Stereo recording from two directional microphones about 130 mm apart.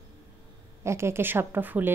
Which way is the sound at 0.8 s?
20° right (ahead or behind).